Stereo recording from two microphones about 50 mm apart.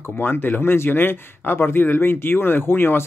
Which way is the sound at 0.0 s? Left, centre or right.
Left.